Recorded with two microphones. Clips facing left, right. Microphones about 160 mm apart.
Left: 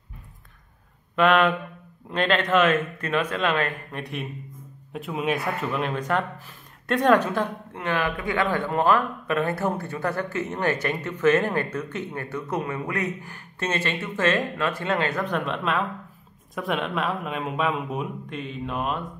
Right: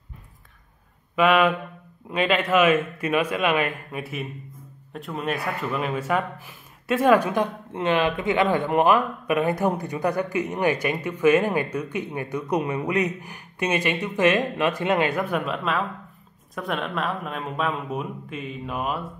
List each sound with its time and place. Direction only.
1.1 s a man's voice: 5° right (ahead or behind)